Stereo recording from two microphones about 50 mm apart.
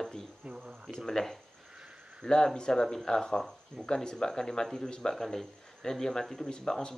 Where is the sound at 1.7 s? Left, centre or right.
Centre.